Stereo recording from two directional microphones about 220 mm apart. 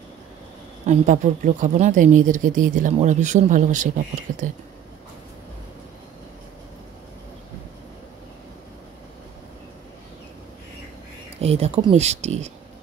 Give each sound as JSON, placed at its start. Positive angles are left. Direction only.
{"t": 0.8, "sound": "speech", "side_deg": -35}
{"t": 11.4, "sound": "speech", "side_deg": -30}